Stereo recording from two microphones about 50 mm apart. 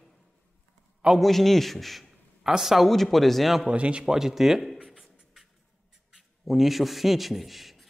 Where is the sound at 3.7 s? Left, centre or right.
Right.